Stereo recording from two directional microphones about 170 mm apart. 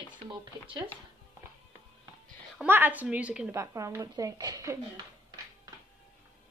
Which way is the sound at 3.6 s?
15° right (ahead or behind).